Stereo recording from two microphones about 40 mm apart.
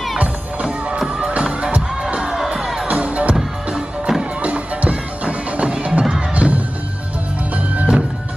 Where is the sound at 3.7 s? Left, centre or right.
Centre.